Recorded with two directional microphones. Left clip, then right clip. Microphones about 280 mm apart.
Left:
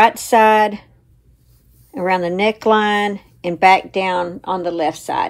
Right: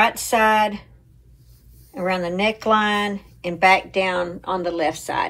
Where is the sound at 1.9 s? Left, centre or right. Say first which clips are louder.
Left 4 dB; left.